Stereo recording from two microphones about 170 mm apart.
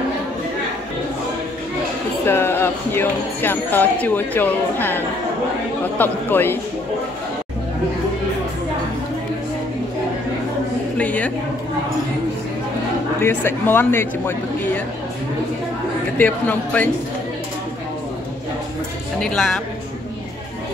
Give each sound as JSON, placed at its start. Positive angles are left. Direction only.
{"t": 2.2, "sound": "speech", "side_deg": 15}
{"t": 11.0, "sound": "a woman's voice", "side_deg": 10}
{"t": 13.2, "sound": "speech", "side_deg": 15}
{"t": 16.2, "sound": "speech", "side_deg": 10}
{"t": 19.1, "sound": "a woman's voice", "side_deg": 5}